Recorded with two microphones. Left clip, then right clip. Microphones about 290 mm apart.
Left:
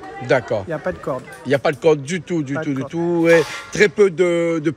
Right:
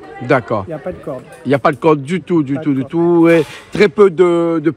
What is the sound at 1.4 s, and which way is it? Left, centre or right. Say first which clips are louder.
Speech: right 4 dB; centre.